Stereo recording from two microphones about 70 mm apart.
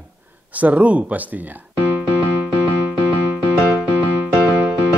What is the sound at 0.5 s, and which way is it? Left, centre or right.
A man's voice, right.